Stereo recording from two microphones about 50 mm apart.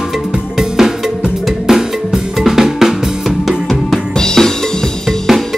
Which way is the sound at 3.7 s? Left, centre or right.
Centre.